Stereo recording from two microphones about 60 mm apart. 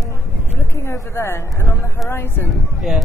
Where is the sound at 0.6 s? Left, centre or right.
Left.